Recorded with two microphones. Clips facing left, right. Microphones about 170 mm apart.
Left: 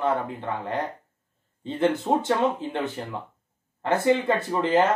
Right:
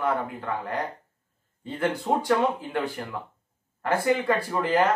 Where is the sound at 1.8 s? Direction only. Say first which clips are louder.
Left 3 dB; 25° left (ahead or behind).